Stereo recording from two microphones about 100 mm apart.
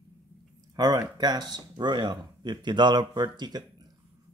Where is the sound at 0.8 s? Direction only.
40° right (ahead or behind).